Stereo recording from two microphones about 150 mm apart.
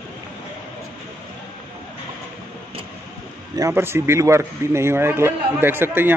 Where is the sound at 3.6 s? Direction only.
20° right (ahead or behind).